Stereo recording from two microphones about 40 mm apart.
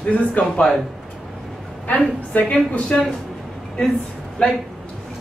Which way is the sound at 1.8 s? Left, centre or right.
Left.